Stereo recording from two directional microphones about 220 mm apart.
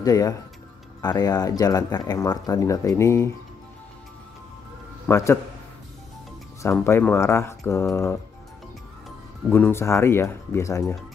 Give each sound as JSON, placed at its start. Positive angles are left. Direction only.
{"t": 0.0, "sound": "speech", "side_deg": 15}
{"t": 5.0, "sound": "a man's voice", "side_deg": 10}
{"t": 6.7, "sound": "speech", "side_deg": 5}
{"t": 9.5, "sound": "speech", "side_deg": 10}